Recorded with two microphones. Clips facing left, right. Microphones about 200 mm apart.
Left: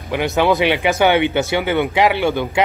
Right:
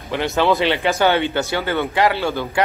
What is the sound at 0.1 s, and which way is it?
Speech, 10° left (ahead or behind).